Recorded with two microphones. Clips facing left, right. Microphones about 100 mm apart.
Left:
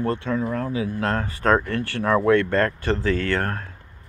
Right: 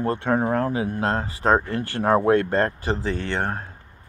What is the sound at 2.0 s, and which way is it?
Speech, 45° right (ahead or behind).